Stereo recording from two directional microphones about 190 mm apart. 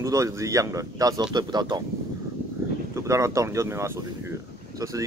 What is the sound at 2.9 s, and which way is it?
Speech, 15° right (ahead or behind).